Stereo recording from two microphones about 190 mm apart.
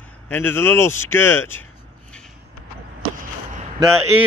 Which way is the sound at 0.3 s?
10° left (ahead or behind).